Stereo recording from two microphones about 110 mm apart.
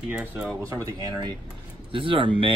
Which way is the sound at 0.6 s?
30° right (ahead or behind).